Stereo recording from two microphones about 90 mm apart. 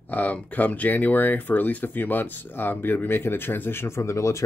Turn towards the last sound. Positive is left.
turn(degrees=35)  # may be behind; listen again after turning